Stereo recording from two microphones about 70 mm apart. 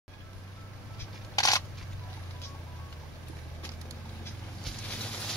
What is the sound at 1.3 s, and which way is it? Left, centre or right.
Single-lens reflex camera, left.